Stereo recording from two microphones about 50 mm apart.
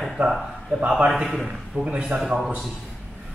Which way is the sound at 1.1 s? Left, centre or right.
Centre.